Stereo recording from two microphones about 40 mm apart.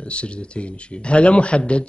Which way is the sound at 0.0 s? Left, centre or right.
Left.